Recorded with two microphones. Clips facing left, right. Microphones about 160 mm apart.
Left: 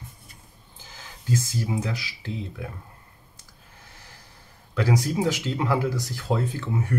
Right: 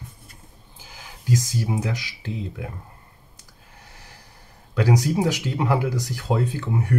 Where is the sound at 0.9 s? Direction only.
15° right (ahead or behind).